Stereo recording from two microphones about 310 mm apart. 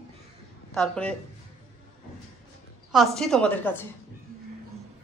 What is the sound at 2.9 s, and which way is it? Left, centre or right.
Speech, centre.